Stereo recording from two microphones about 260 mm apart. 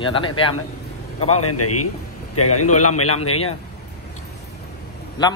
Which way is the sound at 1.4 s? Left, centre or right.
Left.